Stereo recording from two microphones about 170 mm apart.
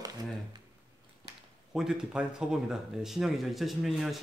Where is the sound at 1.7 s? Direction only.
5° right (ahead or behind).